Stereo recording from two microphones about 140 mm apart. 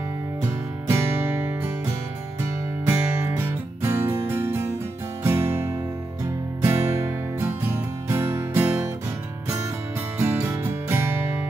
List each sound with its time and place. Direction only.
0.8 s music: 20° right (ahead or behind)
2.9 s music: 15° right (ahead or behind)
10.1 s music: 15° right (ahead or behind)